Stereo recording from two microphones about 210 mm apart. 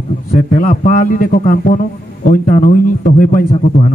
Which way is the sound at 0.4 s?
40° left (ahead or behind).